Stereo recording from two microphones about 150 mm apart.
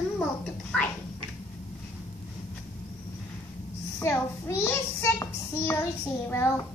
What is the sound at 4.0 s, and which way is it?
A child's voice, 15° left (ahead or behind).